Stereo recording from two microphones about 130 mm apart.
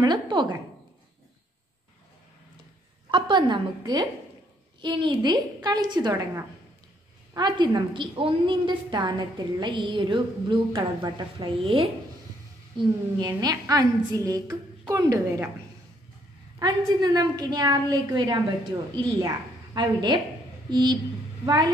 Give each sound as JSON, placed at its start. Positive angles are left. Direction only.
{"t": 0.0, "sound": "speech", "side_deg": -35}
{"t": 3.1, "sound": "a woman's voice", "side_deg": -40}
{"t": 7.3, "sound": "a woman's voice", "side_deg": -35}
{"t": 12.7, "sound": "a woman's voice", "side_deg": -30}
{"t": 16.5, "sound": "a woman's voice", "side_deg": -30}